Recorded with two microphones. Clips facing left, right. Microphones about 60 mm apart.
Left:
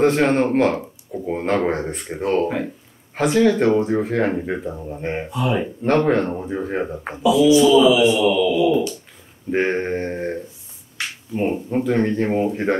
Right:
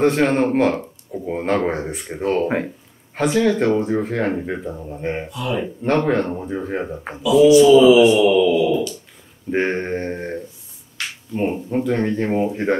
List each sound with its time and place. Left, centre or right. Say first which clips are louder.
0.0 s speech: even; centre
2.4 s speech: right 2 dB; right
3.2 s speech: left 1 dB; centre
7.4 s speech: right 4 dB; right
8.6 s speech: left 2 dB; left
9.5 s speech: even; centre